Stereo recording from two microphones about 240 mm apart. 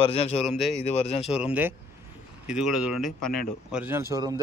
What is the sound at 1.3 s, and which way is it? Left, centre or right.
Speech, centre.